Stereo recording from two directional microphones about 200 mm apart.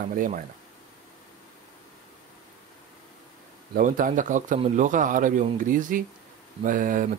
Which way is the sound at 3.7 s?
40° right (ahead or behind).